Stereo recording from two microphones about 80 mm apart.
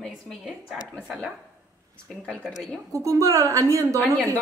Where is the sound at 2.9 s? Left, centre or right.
Right.